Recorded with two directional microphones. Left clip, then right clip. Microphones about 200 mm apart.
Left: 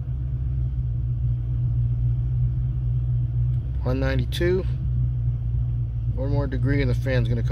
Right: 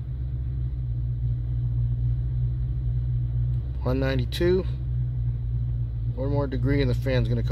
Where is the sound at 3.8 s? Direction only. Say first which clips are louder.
Even; 5° right (ahead or behind).